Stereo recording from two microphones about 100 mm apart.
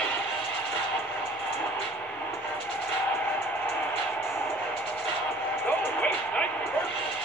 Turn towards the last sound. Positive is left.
turn(degrees=15)  # may be behind; listen again after turning